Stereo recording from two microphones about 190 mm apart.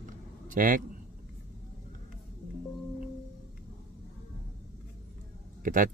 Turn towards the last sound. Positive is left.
turn(degrees=-45)  # may be behind; listen again after turning